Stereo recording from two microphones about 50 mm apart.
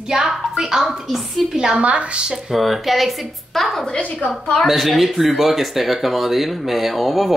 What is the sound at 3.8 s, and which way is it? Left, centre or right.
Speech, centre.